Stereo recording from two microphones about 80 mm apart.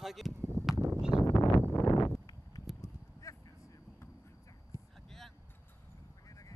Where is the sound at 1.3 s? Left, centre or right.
Left.